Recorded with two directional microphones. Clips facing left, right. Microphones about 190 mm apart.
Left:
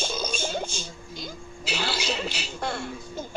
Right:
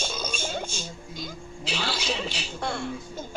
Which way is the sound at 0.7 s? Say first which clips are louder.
Even; 50° right (ahead or behind).